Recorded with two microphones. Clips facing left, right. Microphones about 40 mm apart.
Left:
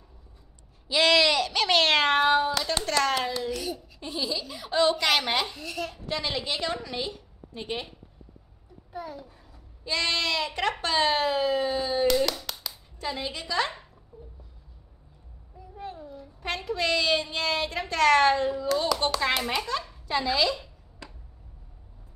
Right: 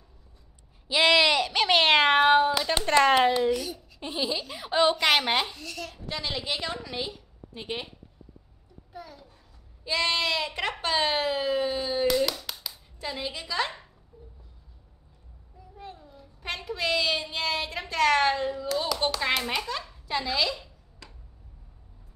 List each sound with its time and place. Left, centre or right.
0.8 s speech: centre
3.6 s a sound: centre
4.0 s speech: right
5.6 s a child's voice: centre
6.0 s a woman's voice: centre
8.9 s a sound: left
9.8 s speech: centre
12.3 s a sound: centre
16.4 s speech: centre